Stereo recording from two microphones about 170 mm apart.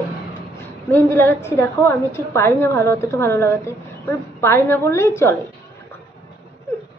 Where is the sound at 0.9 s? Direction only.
15° left (ahead or behind).